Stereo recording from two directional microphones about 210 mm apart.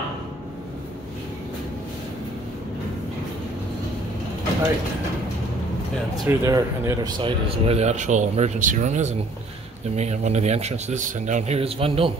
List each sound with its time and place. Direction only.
6.1 s speech: 15° right (ahead or behind)